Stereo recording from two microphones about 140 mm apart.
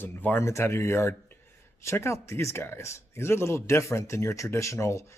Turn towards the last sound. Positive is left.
turn(degrees=20)  # may be behind; listen again after turning